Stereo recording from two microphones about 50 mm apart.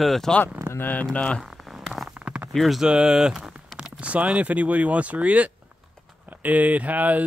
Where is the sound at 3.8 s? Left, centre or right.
Right.